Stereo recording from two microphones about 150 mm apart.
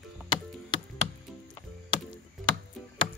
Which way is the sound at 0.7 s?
30° left (ahead or behind).